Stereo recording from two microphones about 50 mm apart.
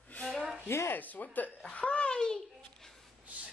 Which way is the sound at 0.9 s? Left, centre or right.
Left.